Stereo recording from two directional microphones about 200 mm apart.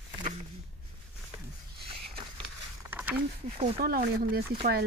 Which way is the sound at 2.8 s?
10° right (ahead or behind).